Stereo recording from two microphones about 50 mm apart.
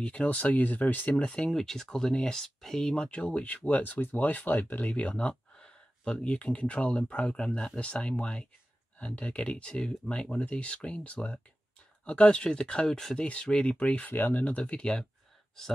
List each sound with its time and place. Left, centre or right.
0.0 s speech: left
1.5 s speech: centre; by 5.3 s left
5.3 s a sound: centre
6.1 s speech: left